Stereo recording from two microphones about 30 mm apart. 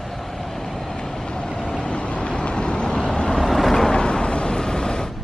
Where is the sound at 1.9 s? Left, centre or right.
Left.